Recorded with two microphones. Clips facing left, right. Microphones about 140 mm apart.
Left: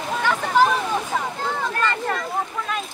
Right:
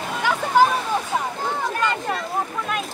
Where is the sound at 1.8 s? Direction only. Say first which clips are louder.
Left 1 dB; 15° right (ahead or behind).